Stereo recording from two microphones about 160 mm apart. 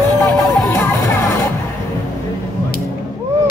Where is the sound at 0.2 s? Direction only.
Centre (ahead or behind).